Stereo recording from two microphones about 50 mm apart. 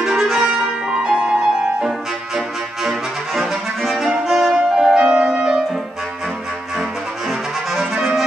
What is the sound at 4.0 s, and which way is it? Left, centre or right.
Music, centre.